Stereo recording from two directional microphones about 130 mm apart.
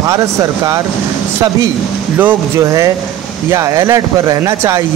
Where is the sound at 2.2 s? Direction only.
20° right (ahead or behind).